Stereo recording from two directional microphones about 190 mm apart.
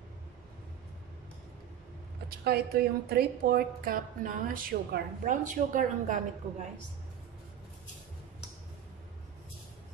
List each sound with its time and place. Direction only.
2.4 s a woman's voice: 55° right (ahead or behind)